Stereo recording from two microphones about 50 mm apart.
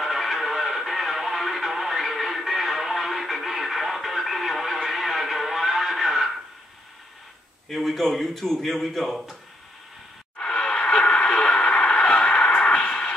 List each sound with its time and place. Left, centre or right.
0.0 s music: centre
7.7 s a man's voice: centre
10.3 s radio: left